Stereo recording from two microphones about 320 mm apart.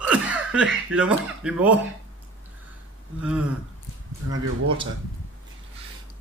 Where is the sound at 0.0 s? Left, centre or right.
Centre.